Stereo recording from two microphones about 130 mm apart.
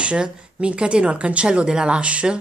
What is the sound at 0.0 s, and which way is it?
Speech, 10° right (ahead or behind).